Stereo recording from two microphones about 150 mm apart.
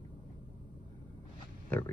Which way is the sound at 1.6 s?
15° left (ahead or behind).